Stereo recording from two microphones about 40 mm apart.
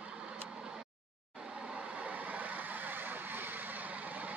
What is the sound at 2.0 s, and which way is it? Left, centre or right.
Vehicle, right.